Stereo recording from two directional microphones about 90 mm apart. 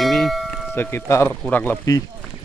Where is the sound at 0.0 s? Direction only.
5° left (ahead or behind).